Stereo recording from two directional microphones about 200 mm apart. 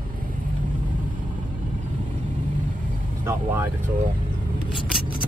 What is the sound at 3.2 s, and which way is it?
Vehicle, 15° right (ahead or behind).